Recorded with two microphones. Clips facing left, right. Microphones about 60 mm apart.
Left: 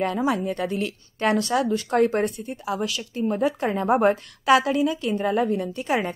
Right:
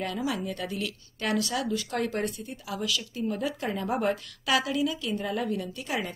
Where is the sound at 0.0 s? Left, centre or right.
Left.